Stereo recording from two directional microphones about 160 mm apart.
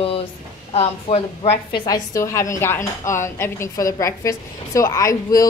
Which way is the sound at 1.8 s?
20° left (ahead or behind).